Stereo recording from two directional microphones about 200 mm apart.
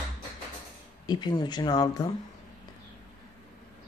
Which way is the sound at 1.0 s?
20° left (ahead or behind).